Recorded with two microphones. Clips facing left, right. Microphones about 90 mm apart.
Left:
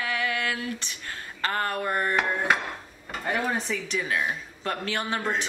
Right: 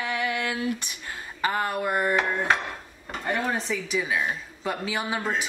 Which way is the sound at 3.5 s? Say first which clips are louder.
Right 1 dB; centre (ahead or behind).